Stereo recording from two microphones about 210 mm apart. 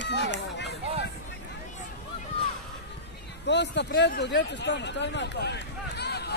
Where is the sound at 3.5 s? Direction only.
55° left (ahead or behind).